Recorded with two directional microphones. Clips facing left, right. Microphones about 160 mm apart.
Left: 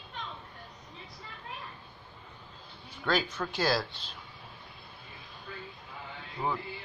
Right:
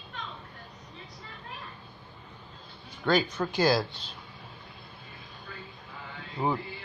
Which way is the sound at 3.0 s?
Centre (ahead or behind).